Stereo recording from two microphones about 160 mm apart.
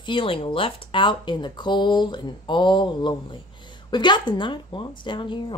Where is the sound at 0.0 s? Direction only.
30° left (ahead or behind).